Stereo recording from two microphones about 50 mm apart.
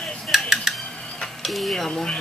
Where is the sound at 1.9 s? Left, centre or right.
Centre.